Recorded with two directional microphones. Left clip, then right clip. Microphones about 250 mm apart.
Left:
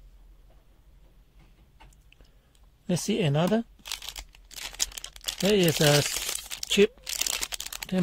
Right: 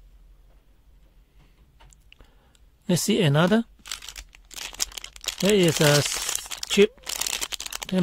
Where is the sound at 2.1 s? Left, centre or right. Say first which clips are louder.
Right 9 dB; right.